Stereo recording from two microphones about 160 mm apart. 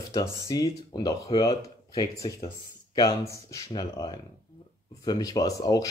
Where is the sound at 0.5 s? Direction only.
25° left (ahead or behind).